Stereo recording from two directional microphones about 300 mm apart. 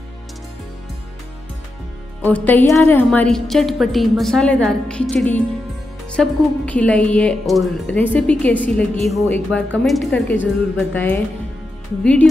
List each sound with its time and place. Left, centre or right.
2.2 s a woman's voice: centre